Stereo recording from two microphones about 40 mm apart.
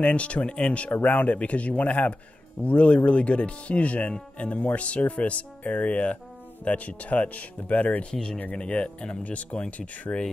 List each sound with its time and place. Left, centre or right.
0.0 s speech: left
8.1 s speech: centre
9.2 s speech: left